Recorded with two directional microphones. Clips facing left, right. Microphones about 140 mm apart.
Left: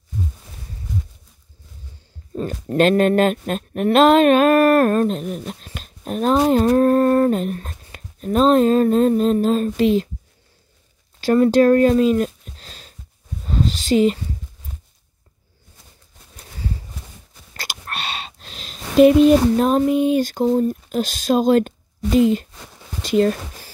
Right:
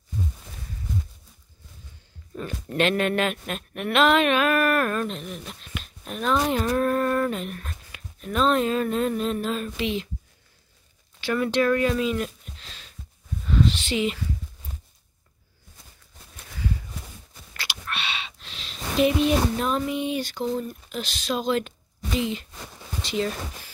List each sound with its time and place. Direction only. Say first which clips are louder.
2.3 s speech: left 7 dB; 40° left (ahead or behind)
11.1 s speech: left 9 dB; 40° left (ahead or behind)
13.4 s a sound: left 1 dB; 35° left (ahead or behind)
17.6 s speech: left 3 dB; 40° left (ahead or behind)